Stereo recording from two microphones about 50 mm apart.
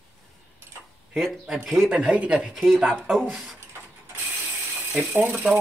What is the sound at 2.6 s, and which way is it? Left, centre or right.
Speech, centre.